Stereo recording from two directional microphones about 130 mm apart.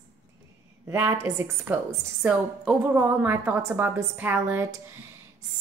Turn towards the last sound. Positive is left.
turn(degrees=-15)  # may be behind; listen again after turning